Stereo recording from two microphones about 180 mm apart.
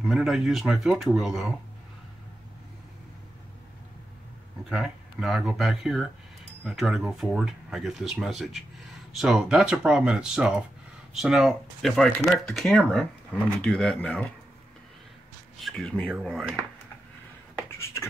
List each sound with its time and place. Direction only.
0.0 s speech: centre (ahead or behind)
4.6 s speech: 5° right (ahead or behind)
15.6 s speech: centre (ahead or behind)
17.6 s beatboxing: 15° left (ahead or behind)